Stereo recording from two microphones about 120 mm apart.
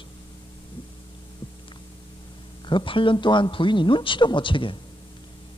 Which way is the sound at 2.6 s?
45° left (ahead or behind).